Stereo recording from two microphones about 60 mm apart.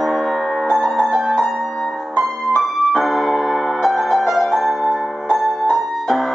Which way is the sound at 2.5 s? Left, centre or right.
Centre.